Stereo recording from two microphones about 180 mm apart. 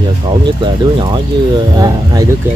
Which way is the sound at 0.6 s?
25° right (ahead or behind).